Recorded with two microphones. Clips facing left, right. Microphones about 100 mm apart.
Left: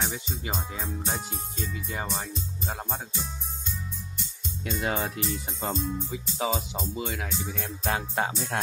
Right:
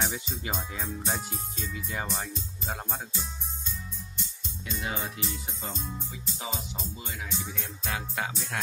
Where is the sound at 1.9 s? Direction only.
5° left (ahead or behind).